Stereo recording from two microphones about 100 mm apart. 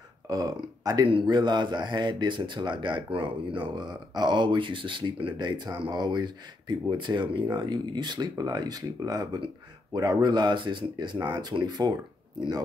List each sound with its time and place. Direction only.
0.3 s speech: 40° right (ahead or behind)